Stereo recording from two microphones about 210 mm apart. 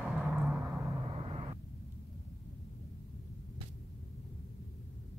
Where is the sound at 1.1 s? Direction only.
25° right (ahead or behind).